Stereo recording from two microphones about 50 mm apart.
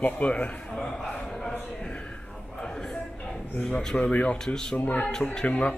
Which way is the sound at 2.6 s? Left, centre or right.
Centre.